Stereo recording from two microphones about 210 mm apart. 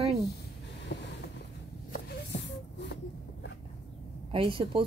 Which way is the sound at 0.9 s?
55° left (ahead or behind).